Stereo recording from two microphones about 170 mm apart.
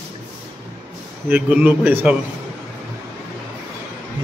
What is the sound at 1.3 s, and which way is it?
Speech, 10° right (ahead or behind).